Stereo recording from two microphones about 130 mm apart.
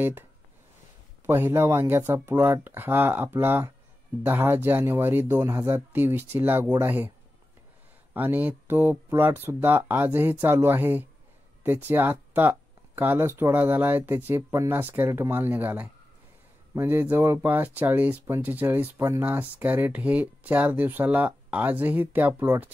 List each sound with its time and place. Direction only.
1.2 s speech: 20° right (ahead or behind)
8.1 s speech: 15° right (ahead or behind)